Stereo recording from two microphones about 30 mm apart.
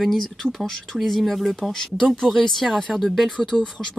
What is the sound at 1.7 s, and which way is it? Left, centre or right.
Speech, left.